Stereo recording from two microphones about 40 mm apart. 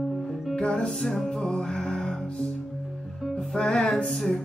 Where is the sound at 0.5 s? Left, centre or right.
Left.